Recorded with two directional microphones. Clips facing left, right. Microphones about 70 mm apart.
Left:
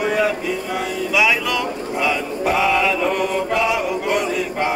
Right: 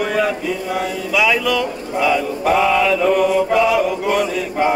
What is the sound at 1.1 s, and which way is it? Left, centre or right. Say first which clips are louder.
Mantra: right 2 dB; centre.